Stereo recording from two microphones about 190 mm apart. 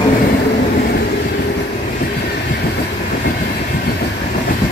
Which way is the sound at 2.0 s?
55° left (ahead or behind).